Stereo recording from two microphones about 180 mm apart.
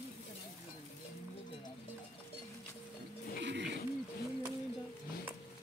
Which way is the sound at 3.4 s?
80° right.